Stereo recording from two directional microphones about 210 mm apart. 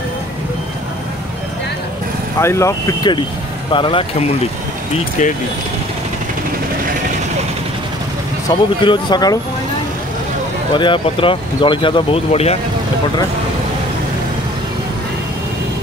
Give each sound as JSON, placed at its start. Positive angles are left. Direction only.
{"t": 2.4, "sound": "speech", "side_deg": 15}
{"t": 5.2, "sound": "speech", "side_deg": 35}
{"t": 8.5, "sound": "speech", "side_deg": 20}
{"t": 10.8, "sound": "speech", "side_deg": 25}